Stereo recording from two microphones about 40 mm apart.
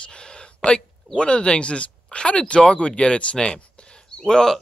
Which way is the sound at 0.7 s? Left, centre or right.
Left.